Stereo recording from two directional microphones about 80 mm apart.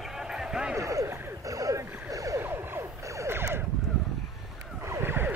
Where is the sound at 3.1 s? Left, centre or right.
Right.